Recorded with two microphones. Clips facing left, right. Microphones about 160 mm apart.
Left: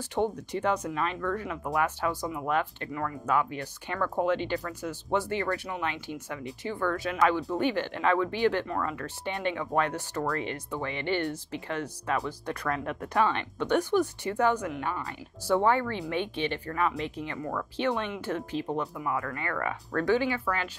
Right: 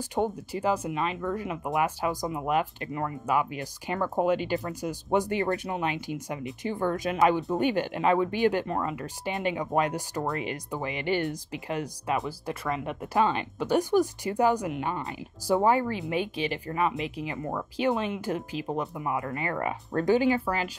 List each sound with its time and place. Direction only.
0.1 s speech: 10° right (ahead or behind); by 3.2 s 25° right (ahead or behind)
3.3 s speech: 10° right (ahead or behind)
15.4 s speech: 10° right (ahead or behind)
18.9 s speech: 20° right (ahead or behind)
20.2 s speech: 35° right (ahead or behind)